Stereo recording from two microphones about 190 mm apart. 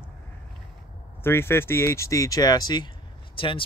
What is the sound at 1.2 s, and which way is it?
Speech, 10° left (ahead or behind).